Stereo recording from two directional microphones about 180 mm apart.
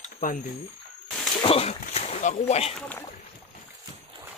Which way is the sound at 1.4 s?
35° left (ahead or behind).